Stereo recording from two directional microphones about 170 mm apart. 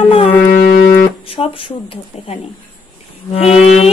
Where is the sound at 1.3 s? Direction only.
35° left (ahead or behind).